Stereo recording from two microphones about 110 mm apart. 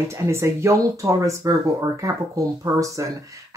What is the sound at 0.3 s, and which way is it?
Speech, 25° right (ahead or behind).